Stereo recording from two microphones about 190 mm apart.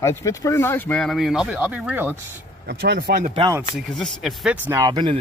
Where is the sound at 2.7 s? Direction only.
55° right (ahead or behind).